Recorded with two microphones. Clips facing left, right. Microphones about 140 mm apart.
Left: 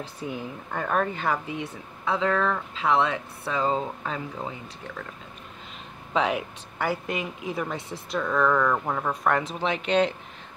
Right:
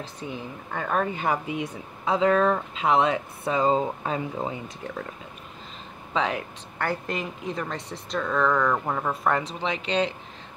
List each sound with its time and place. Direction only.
0.2 s speech: 5° left (ahead or behind)
1.0 s speech: 15° right (ahead or behind); by 5.0 s 30° right (ahead or behind)
6.1 s speech: 10° left (ahead or behind)